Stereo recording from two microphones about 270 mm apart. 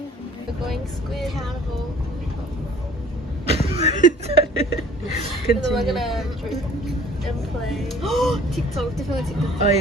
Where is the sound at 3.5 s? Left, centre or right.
Right.